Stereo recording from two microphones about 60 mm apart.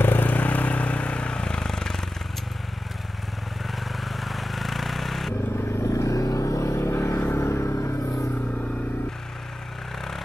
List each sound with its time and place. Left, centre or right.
0.0 s vehicle: left; by 2.0 s centre
3.8 s vehicle: centre
5.7 s vehicle: left